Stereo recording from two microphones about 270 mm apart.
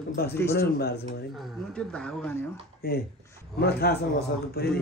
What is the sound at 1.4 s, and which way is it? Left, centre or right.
A man's voice, centre.